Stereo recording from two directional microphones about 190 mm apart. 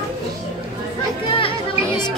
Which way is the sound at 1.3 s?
30° left (ahead or behind).